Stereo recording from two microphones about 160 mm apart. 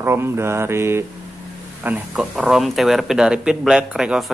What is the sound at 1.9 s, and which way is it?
Speech, centre (ahead or behind).